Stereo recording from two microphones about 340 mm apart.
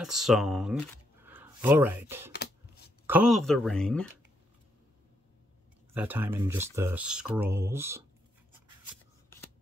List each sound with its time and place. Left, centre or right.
0.0 s speech: centre
2.3 s scissors: left
3.1 s speech: centre
5.9 s speech: centre